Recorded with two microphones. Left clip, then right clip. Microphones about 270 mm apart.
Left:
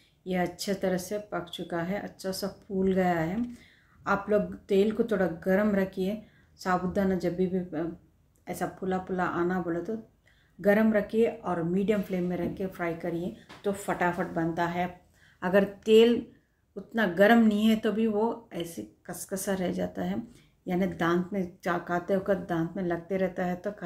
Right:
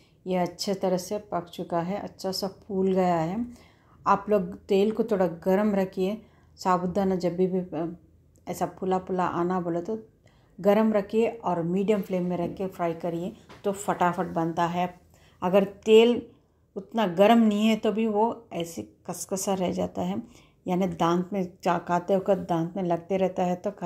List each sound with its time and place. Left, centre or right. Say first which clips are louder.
0.2 s a woman's voice: right 3 dB; centre